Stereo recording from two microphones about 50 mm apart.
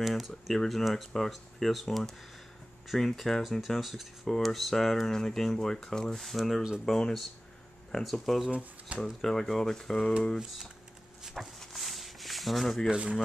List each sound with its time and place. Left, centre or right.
0.0 s speech: centre
8.5 s speech: right
9.2 s speech: centre
11.3 s rub: centre
12.9 s speech: centre